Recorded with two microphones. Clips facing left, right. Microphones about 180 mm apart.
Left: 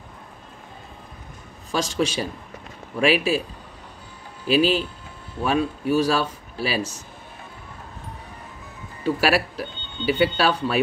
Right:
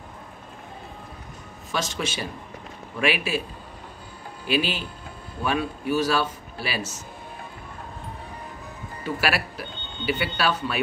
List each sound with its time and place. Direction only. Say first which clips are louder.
1.7 s speech: left 5 dB; 35° left (ahead or behind)
4.5 s speech: left 6 dB; 35° left (ahead or behind)
9.0 s speech: left 5 dB; 35° left (ahead or behind)